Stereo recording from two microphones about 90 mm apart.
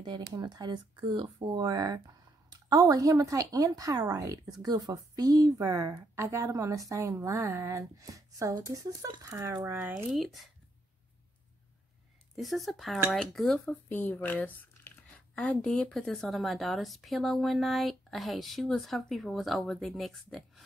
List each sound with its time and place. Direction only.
0.0 s speech: 55° right (ahead or behind)
1.6 s speech: 45° right (ahead or behind)
9.6 s speech: 25° right (ahead or behind)
10.1 s speech: centre (ahead or behind)
12.4 s speech: centre (ahead or behind)
13.7 s speech: 20° left (ahead or behind); by 20.6 s centre (ahead or behind)